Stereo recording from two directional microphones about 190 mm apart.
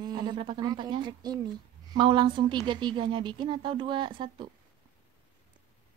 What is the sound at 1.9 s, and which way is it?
Speech, 25° right (ahead or behind).